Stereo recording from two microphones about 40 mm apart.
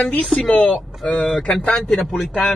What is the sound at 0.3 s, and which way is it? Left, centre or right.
Speech, centre.